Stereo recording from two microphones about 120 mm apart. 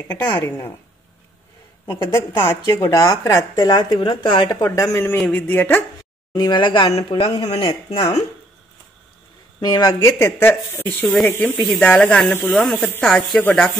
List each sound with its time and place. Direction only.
0.1 s speech: 35° left (ahead or behind)
1.9 s speech: 40° left (ahead or behind)
2.7 s speech: 25° left (ahead or behind)
3.6 s speech: 35° left (ahead or behind)
4.6 s speech: 25° left (ahead or behind)
6.3 s speech: 40° left (ahead or behind)
6.9 s a man's voice: 55° left (ahead or behind)
9.6 s speech: 35° left (ahead or behind); by 10.9 s 20° left (ahead or behind)
11.0 s speech: 5° left (ahead or behind)